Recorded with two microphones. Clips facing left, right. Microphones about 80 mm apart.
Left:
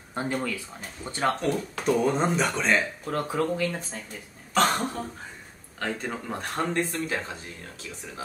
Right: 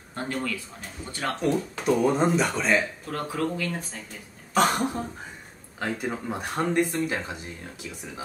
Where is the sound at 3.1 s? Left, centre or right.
Left.